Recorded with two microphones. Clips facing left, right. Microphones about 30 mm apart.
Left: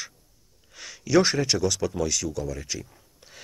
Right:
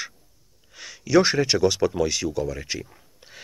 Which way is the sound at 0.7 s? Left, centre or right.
Centre.